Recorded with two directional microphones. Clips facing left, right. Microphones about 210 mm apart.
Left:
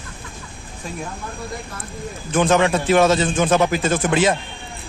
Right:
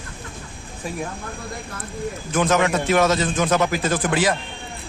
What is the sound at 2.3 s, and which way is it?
A man's voice, 30° left (ahead or behind).